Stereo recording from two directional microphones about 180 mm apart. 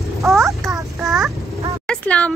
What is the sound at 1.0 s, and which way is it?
Child singing, centre (ahead or behind).